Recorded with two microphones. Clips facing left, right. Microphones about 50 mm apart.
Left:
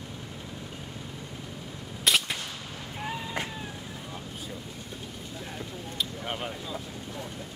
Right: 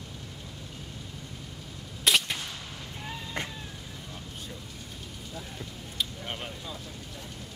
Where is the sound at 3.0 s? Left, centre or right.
Centre.